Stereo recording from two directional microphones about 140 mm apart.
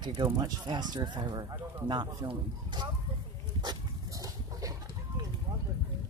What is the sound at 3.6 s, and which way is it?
Dog, 25° right (ahead or behind).